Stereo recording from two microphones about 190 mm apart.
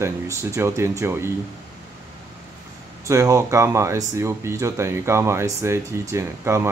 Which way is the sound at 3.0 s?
15° right (ahead or behind).